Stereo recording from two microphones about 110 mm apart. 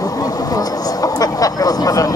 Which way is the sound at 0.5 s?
35° left (ahead or behind).